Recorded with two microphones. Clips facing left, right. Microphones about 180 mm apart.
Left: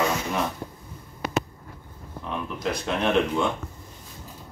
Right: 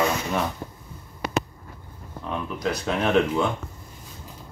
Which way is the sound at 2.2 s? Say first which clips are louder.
Right 2 dB; centre (ahead or behind).